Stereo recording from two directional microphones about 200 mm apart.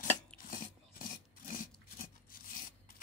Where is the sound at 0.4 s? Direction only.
45° left (ahead or behind).